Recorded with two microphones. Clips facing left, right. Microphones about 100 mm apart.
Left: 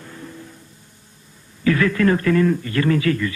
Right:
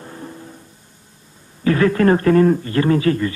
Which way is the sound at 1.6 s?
35° right (ahead or behind).